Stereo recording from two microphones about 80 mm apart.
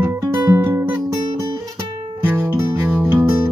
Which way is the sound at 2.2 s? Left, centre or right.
Right.